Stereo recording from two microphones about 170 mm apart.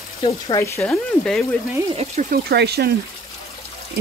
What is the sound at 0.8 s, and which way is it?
Speech, centre (ahead or behind).